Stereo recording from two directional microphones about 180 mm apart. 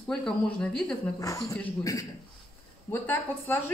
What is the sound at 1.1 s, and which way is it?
A man's voice, 20° left (ahead or behind).